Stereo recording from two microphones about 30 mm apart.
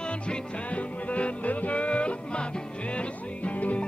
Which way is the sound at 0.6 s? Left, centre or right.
Left.